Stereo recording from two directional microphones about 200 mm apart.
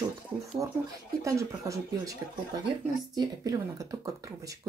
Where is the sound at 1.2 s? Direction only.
15° right (ahead or behind).